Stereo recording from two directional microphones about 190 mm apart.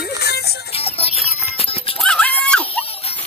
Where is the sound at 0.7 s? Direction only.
30° left (ahead or behind).